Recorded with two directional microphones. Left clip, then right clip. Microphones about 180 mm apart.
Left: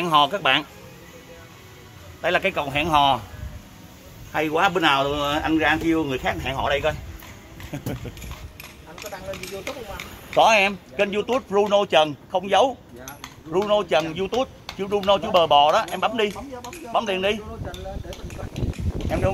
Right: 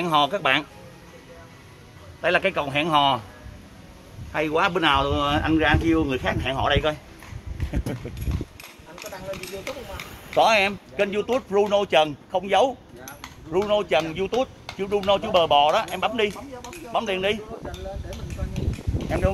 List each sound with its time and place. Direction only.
0.0 s speech: 10° right (ahead or behind)
2.2 s speech: 20° right (ahead or behind)
4.3 s speech: 10° right (ahead or behind); by 7.0 s 30° right (ahead or behind)
7.7 s a sound: 20° right (ahead or behind)
8.9 s a sound: 55° right (ahead or behind)
10.3 s speech: 10° left (ahead or behind)